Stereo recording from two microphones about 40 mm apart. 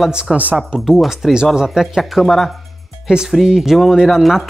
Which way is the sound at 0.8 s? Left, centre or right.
Centre.